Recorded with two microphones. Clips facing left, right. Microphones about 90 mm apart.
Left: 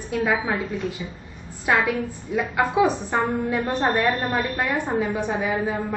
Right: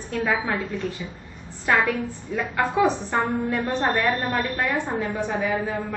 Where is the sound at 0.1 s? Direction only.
10° left (ahead or behind).